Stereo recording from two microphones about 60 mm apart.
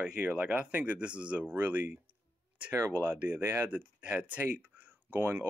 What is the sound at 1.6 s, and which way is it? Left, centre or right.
Speech, right.